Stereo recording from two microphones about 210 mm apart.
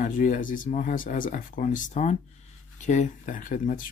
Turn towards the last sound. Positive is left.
turn(degrees=40)  # may be behind; listen again after turning